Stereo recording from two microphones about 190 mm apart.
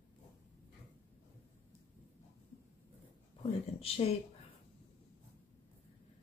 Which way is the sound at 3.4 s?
30° left (ahead or behind).